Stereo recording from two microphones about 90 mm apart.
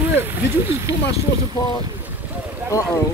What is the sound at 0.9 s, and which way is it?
Speech, 35° right (ahead or behind).